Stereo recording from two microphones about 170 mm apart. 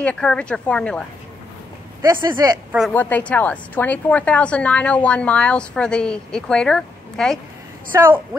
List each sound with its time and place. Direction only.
0.0 s speech: 5° left (ahead or behind)
2.0 s speech: 25° right (ahead or behind)
2.9 s a woman's voice: 10° left (ahead or behind)
7.9 s a woman's voice: 10° right (ahead or behind)